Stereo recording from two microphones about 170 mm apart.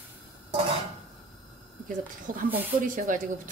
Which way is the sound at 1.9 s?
50° right (ahead or behind).